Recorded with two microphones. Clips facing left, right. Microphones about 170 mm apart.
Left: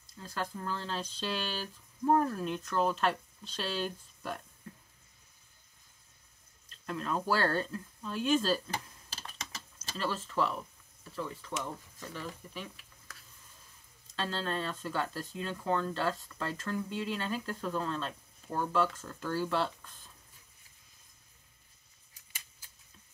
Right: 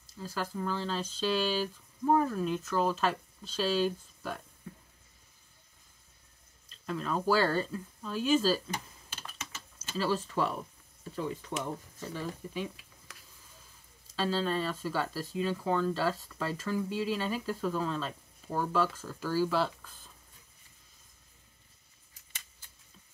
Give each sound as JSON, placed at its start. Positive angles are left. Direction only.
{"t": 0.0, "sound": "speech", "side_deg": -5}
{"t": 6.9, "sound": "speech", "side_deg": 0}
{"t": 8.6, "sound": "typing", "side_deg": 35}
{"t": 9.9, "sound": "speech", "side_deg": -10}
{"t": 14.1, "sound": "speech", "side_deg": -5}